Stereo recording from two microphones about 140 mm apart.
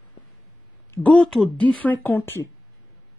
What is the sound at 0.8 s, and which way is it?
Speech, 10° left (ahead or behind).